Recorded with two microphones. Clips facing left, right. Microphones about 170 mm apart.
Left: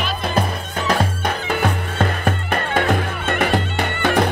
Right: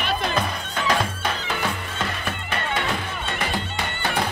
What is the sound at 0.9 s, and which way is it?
Music, 50° left (ahead or behind).